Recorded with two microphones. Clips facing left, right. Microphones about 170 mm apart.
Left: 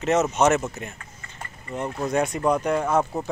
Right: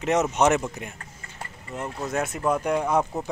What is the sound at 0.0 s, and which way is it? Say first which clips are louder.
Speech: left 1 dB; 15° right (ahead or behind).